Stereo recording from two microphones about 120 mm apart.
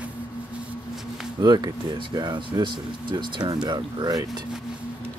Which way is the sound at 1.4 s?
40° right (ahead or behind).